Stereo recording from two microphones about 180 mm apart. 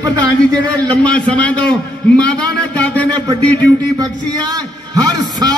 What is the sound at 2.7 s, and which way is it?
Speech, 10° left (ahead or behind).